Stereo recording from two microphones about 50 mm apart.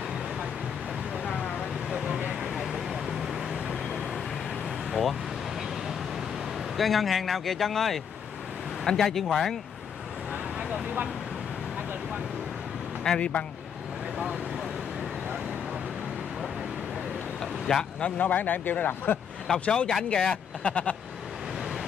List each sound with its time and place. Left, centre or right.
1.9 s vehicle: centre
6.8 s speech: centre
10.3 s vehicle: right
13.0 s speech: centre
17.4 s vehicle: centre
18.0 s speech: left
19.6 s speech: left